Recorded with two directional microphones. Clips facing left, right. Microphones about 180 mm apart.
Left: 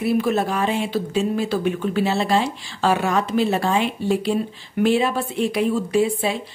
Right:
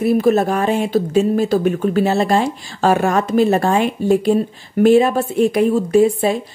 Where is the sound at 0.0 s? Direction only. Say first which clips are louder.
Right 6 dB; 45° right (ahead or behind).